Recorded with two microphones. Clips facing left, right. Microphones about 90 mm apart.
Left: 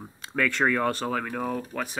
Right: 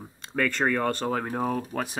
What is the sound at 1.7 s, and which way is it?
Speech, 50° right (ahead or behind).